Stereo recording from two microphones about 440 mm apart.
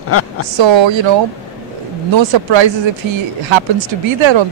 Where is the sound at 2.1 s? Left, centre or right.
Right.